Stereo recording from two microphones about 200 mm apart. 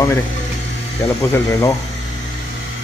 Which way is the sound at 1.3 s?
15° left (ahead or behind).